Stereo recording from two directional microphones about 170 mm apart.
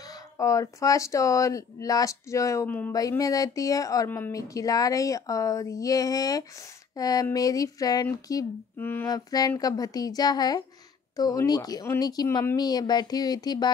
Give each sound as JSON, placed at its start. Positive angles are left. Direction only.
{"t": 0.0, "sound": "speech", "side_deg": 20}